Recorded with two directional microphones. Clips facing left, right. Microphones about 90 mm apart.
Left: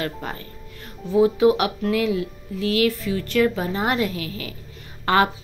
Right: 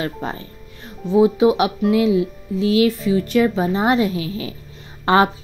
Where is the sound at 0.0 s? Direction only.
20° right (ahead or behind).